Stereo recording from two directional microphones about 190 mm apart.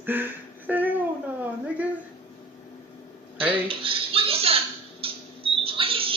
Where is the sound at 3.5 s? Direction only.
30° right (ahead or behind).